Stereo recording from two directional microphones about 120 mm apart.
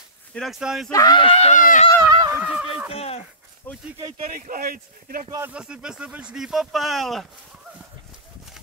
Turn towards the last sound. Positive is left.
turn(degrees=0)  # may be behind; listen again after turning